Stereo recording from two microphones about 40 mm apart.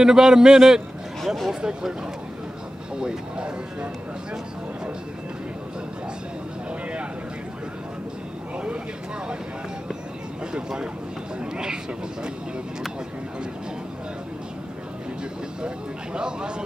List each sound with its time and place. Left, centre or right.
0.0 s a man's voice: centre
1.2 s speech: centre
1.5 s a man's voice: centre
3.0 s speech: right
10.5 s speech: centre
15.6 s speech: right